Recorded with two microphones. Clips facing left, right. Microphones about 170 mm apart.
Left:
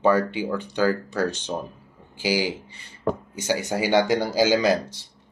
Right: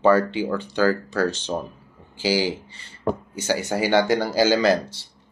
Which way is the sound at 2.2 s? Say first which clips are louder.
Right 2 dB; 15° left (ahead or behind).